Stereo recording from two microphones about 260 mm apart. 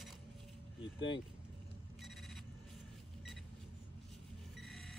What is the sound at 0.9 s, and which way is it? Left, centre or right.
Speech, left.